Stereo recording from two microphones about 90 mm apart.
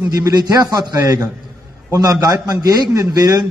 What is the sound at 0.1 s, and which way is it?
A man's voice, 50° right (ahead or behind).